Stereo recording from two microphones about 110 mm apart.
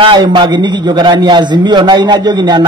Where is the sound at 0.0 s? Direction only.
45° right (ahead or behind).